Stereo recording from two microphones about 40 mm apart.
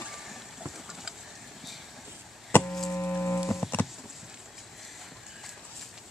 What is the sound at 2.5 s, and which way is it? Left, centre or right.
Chop, left.